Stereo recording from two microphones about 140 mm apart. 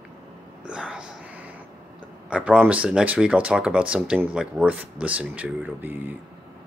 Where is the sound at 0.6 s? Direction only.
5° right (ahead or behind).